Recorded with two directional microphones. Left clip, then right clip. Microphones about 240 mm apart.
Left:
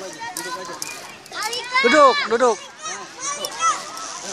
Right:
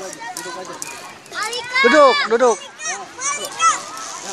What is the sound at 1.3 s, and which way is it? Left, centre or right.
Children playing, right.